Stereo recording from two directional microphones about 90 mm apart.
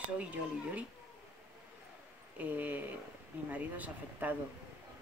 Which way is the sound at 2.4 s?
20° right (ahead or behind).